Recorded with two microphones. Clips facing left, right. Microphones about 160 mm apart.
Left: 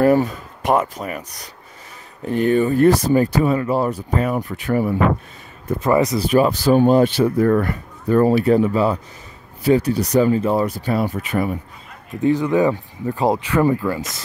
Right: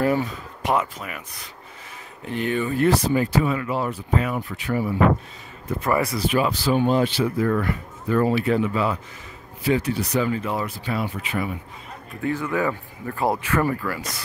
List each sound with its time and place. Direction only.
0.0 s speech: 50° left (ahead or behind)
5.9 s speech: 20° left (ahead or behind)
6.3 s speech: 45° left (ahead or behind)
12.2 s speech: 20° left (ahead or behind)